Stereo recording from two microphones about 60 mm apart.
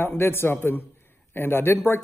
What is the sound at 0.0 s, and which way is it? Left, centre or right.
Speech, left.